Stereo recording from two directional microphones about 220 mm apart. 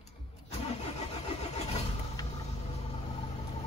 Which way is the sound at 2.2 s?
15° left (ahead or behind).